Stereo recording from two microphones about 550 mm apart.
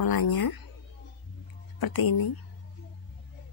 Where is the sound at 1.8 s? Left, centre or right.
Left.